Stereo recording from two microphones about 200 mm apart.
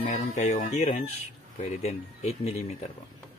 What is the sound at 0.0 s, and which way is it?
Speech, 35° left (ahead or behind).